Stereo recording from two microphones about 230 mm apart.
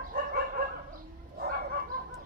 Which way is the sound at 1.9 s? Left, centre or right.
Right.